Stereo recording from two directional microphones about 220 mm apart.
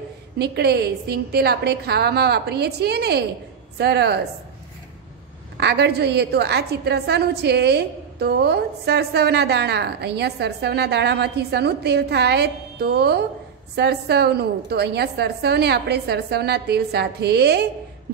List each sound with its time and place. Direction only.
0.4 s a woman's voice: 45° right (ahead or behind)
5.6 s a woman's voice: 50° right (ahead or behind)